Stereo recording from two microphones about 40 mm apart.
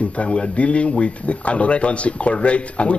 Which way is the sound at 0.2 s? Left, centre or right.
Left.